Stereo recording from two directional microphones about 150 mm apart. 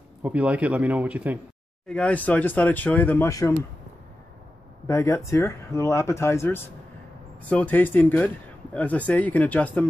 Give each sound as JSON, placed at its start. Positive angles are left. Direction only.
{"t": 0.2, "sound": "a man's voice", "side_deg": -10}
{"t": 1.9, "sound": "speech", "side_deg": 5}
{"t": 4.8, "sound": "speech", "side_deg": 20}